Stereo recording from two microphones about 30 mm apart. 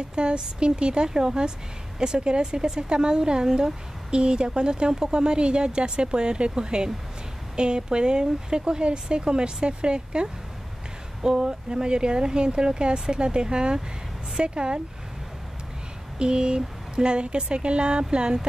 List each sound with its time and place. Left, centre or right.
0.1 s speech: right
4.1 s speech: right
16.2 s speech: right